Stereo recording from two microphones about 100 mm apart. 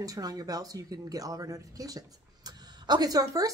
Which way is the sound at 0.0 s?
35° right (ahead or behind).